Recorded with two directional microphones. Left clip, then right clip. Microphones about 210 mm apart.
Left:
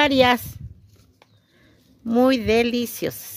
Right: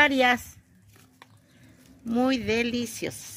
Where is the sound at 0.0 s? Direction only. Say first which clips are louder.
Left 4 dB; 50° left (ahead or behind).